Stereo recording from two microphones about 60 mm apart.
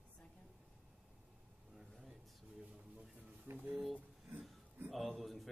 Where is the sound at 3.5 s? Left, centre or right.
Right.